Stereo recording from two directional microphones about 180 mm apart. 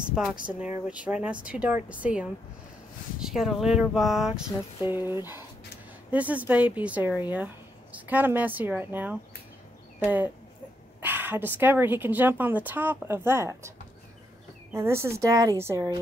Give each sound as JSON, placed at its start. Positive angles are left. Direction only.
{"t": 0.1, "sound": "speech", "side_deg": 0}
{"t": 4.9, "sound": "speech", "side_deg": -10}